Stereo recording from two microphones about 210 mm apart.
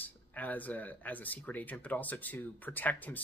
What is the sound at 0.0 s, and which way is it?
Speech, 10° left (ahead or behind).